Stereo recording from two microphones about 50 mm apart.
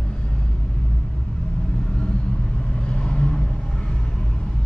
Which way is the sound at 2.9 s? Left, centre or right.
Centre.